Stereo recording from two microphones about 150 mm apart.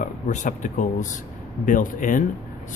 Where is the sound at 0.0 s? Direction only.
55° left (ahead or behind).